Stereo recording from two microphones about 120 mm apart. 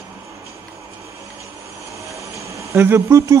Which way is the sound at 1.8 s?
25° right (ahead or behind).